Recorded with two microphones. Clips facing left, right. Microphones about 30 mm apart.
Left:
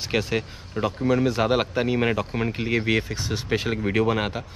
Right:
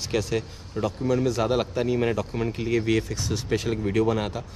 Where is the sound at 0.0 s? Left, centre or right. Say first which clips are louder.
Left 1 dB; left.